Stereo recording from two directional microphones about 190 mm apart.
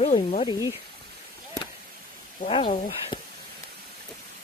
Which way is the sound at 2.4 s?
35° left (ahead or behind).